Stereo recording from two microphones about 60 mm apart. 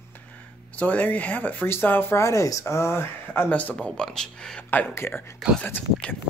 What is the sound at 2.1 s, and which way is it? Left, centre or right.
Speech, left.